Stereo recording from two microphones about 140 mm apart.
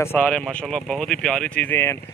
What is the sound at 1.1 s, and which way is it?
Speech, 5° left (ahead or behind).